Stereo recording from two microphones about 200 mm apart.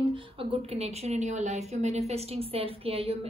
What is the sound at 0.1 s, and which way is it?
A woman's voice, 25° right (ahead or behind).